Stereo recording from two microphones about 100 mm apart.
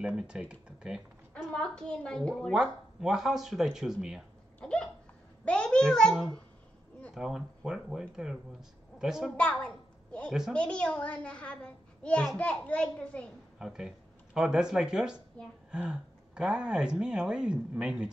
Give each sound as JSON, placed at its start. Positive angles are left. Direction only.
{"t": 0.0, "sound": "speech", "side_deg": -5}
{"t": 1.5, "sound": "a child's voice", "side_deg": 10}
{"t": 2.5, "sound": "speech", "side_deg": -5}
{"t": 4.6, "sound": "hiccup", "side_deg": 10}
{"t": 5.4, "sound": "a child's voice", "side_deg": 10}
{"t": 7.2, "sound": "speech", "side_deg": -5}
{"t": 9.4, "sound": "a woman's voice", "side_deg": 10}
{"t": 13.6, "sound": "speech", "side_deg": -5}
{"t": 15.4, "sound": "a child's voice", "side_deg": 10}
{"t": 15.7, "sound": "speech", "side_deg": -10}